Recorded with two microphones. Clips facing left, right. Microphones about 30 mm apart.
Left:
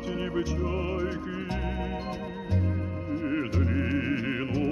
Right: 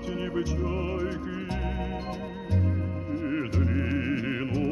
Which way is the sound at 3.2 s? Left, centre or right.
Centre.